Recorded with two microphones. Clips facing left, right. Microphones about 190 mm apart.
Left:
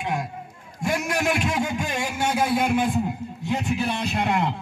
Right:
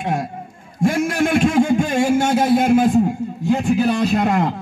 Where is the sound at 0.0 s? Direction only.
45° right (ahead or behind).